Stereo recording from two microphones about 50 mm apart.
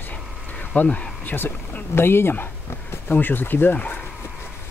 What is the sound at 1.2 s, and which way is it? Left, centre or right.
Speech, left.